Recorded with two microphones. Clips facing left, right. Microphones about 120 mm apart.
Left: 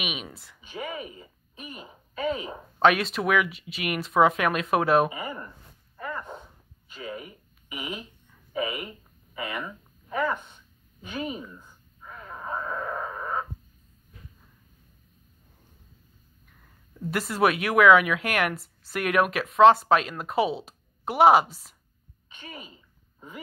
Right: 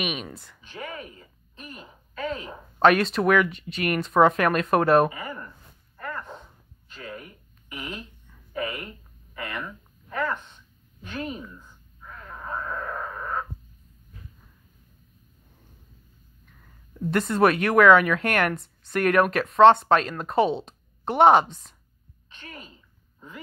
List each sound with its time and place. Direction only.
0.0 s speech: 5° left (ahead or behind)
0.6 s speech: 10° left (ahead or behind)
5.1 s speech: 15° left (ahead or behind)
5.9 s a sound: 10° left (ahead or behind)
6.9 s speech: 10° left (ahead or behind)
8.5 s a sound: 10° left (ahead or behind)
17.1 s speech: 5° left (ahead or behind)